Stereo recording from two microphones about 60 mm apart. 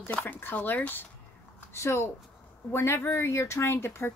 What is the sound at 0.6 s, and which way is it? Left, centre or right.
Speech, left.